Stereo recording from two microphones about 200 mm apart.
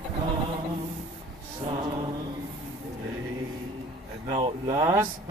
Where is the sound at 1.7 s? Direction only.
25° right (ahead or behind).